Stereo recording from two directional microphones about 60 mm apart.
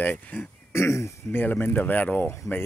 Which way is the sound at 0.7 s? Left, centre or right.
Left.